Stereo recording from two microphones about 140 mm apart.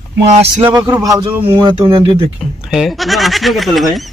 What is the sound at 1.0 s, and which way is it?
Speech, 30° right (ahead or behind).